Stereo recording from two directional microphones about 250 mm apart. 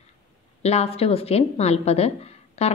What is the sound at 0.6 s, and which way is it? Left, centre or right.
A woman's voice, left.